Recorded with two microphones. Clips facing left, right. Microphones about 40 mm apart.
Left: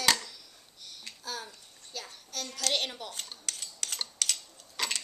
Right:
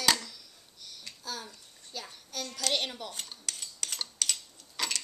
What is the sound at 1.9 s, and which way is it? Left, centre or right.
Dishes, centre.